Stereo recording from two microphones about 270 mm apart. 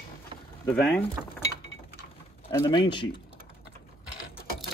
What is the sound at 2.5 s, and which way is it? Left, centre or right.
Speech, centre.